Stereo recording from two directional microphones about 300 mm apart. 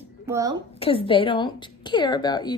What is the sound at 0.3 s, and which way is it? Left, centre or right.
Laughter, centre.